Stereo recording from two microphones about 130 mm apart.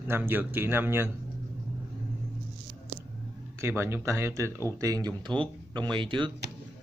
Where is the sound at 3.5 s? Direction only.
20° right (ahead or behind); by 6.3 s 40° right (ahead or behind).